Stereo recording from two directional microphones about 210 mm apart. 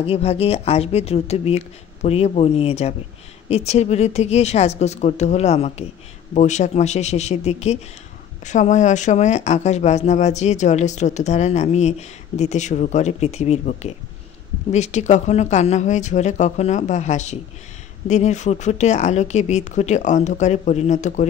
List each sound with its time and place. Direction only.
0.0 s speech: 30° left (ahead or behind)